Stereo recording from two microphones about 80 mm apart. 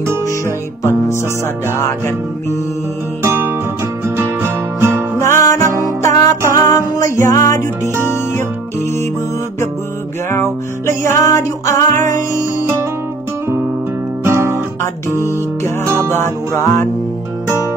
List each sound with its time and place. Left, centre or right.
1.8 s music: left
3.2 s music: right
5.2 s music: left
8.0 s music: left
10.3 s music: left
14.2 s guitar: right
15.2 s music: left